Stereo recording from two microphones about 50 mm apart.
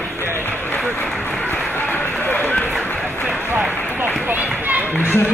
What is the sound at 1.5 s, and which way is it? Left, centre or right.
Run, left.